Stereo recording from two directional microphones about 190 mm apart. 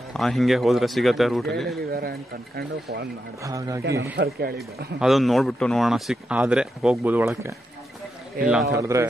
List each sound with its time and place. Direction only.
0.1 s speech: centre (ahead or behind)
1.8 s speech: 55° right (ahead or behind)
3.4 s a man's voice: 15° right (ahead or behind)
4.2 s speech: 55° right (ahead or behind)
5.0 s speech: centre (ahead or behind)
8.4 s a man's voice: 50° right (ahead or behind)
8.7 s a man's voice: 15° right (ahead or behind)